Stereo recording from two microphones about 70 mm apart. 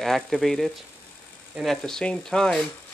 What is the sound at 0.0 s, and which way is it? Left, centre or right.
Speech, centre.